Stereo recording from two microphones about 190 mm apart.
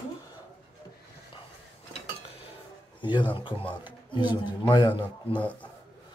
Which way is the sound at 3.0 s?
25° left (ahead or behind).